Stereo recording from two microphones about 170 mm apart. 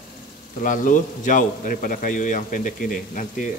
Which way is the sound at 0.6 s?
50° left (ahead or behind).